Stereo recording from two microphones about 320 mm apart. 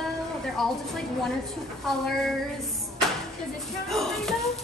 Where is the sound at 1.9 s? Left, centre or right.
Centre.